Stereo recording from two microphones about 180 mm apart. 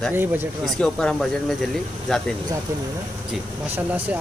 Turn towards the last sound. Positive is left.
turn(degrees=-10)  # may be behind; listen again after turning